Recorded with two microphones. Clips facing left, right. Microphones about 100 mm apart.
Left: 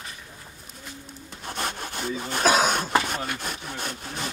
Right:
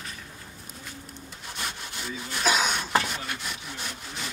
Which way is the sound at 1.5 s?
45° left (ahead or behind).